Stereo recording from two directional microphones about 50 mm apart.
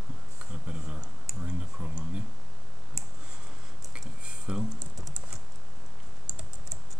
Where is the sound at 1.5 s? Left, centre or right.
Right.